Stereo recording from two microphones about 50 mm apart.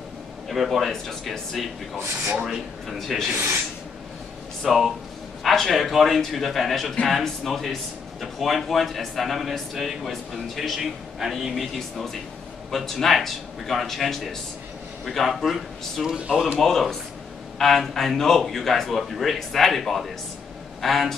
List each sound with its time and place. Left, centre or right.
0.5 s speech: centre
3.3 s speech: right
4.6 s speech: centre
16.1 s speech: centre
16.5 s speech: centre